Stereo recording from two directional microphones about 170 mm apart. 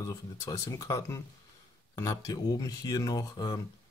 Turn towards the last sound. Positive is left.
turn(degrees=20)  # may be behind; listen again after turning